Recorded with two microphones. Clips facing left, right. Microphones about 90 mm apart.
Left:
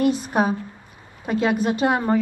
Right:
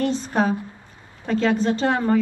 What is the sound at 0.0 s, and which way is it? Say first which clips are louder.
A woman's voice: left 1 dB; 15° left (ahead or behind).